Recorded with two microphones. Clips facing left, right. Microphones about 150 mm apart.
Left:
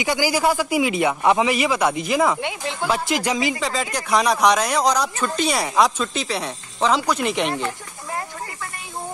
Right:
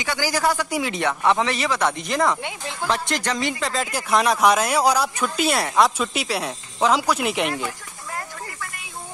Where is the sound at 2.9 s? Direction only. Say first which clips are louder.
Left 2 dB; 5° left (ahead or behind).